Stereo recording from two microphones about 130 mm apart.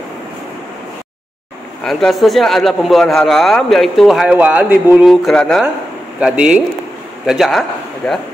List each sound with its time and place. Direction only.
1.9 s a man's voice: 5° left (ahead or behind)
5.3 s speech: 5° left (ahead or behind)
6.1 s a man's voice: 10° right (ahead or behind)